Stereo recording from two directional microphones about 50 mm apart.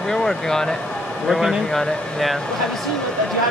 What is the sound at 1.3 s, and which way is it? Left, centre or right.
Speech, centre.